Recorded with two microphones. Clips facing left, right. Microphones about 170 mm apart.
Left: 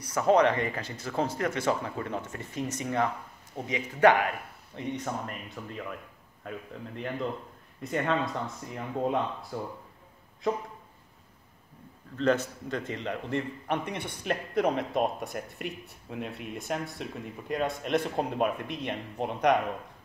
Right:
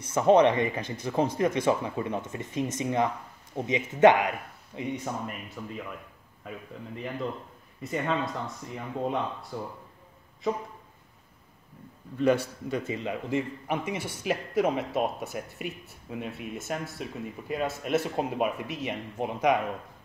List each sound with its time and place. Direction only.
0.0 s a man's voice: 20° right (ahead or behind); by 6.6 s 5° right (ahead or behind)
7.8 s a man's voice: centre (ahead or behind)
12.2 s a man's voice: 10° right (ahead or behind)